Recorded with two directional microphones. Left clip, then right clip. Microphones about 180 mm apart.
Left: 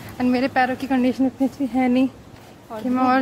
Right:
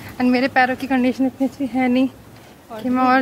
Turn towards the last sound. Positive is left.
turn(degrees=-5)  # may be behind; listen again after turning